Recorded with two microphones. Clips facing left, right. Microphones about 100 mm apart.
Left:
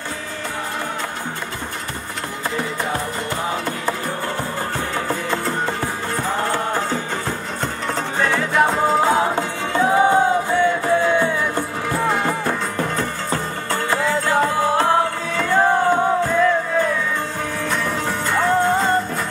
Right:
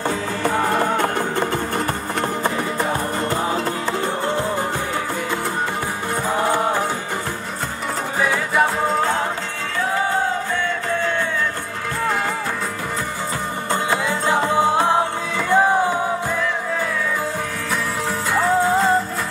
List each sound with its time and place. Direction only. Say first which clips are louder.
8.2 s music: left 1 dB; 5° right (ahead or behind)
9.8 s music: left 6 dB; 20° left (ahead or behind)
13.8 s music: left 2 dB; 20° right (ahead or behind)
18.3 s music: even; 5° right (ahead or behind)